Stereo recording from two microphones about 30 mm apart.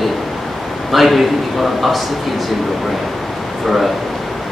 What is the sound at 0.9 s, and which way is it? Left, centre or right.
A man's voice, centre.